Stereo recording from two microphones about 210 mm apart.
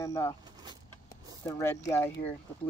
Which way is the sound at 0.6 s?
20° right (ahead or behind).